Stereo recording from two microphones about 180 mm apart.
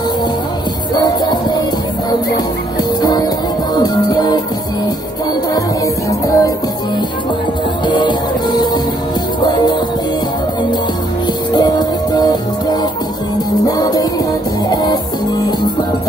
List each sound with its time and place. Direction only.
0.9 s music: 20° left (ahead or behind)
3.0 s music: 20° left (ahead or behind)
6.0 s music: 20° left (ahead or behind)
7.8 s music: 25° left (ahead or behind)
11.5 s music: 25° left (ahead or behind)